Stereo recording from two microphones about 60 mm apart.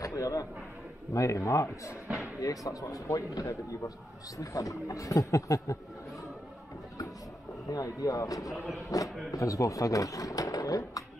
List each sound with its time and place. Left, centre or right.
0.0 s a sound: left
1.1 s a man's voice: left
2.4 s speech: left
7.7 s speech: left